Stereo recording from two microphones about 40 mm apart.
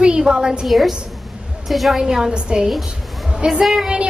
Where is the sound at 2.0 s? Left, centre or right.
Centre.